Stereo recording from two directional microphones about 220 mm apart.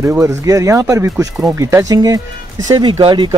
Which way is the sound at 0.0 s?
10° right (ahead or behind).